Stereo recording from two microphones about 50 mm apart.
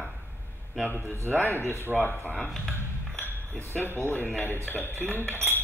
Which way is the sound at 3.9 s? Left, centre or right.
Right.